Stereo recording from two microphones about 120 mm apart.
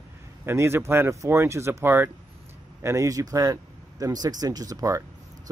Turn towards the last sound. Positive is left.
turn(degrees=-30)  # may be behind; listen again after turning